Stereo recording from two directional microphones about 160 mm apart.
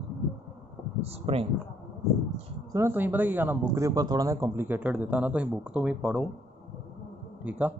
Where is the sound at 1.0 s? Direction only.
40° right (ahead or behind).